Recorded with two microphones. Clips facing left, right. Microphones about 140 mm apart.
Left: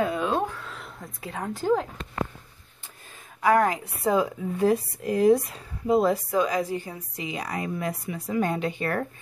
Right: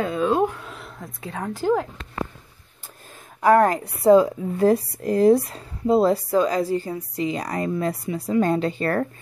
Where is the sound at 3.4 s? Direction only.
40° right (ahead or behind).